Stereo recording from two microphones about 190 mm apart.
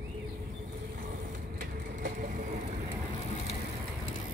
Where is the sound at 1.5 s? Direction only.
50° right (ahead or behind).